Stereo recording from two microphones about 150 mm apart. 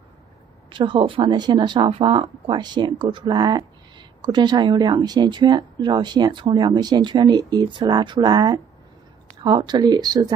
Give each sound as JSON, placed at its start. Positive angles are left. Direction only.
{"t": 0.7, "sound": "speech", "side_deg": -35}